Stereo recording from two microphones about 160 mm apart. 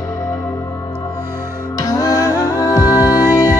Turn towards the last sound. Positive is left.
turn(degrees=25)  # may be behind; listen again after turning